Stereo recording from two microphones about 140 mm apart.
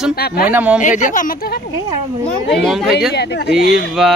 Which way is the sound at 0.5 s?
10° right (ahead or behind).